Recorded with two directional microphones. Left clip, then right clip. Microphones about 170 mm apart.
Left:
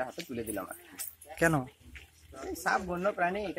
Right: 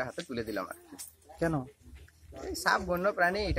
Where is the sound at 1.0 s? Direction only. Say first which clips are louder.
Left 5 dB; centre (ahead or behind).